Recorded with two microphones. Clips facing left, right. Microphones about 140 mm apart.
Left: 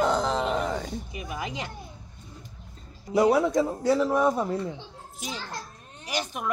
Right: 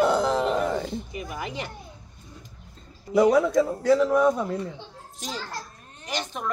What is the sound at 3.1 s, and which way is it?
Speech, 25° left (ahead or behind).